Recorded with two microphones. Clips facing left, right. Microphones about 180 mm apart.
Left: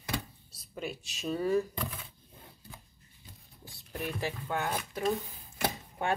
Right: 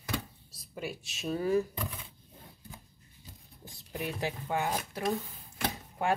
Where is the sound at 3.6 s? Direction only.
20° right (ahead or behind).